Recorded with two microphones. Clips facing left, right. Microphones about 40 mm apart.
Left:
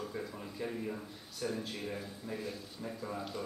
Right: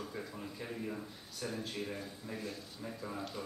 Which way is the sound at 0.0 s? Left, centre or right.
Centre.